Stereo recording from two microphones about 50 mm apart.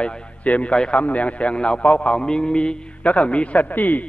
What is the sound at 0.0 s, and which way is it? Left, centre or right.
A man's voice, left.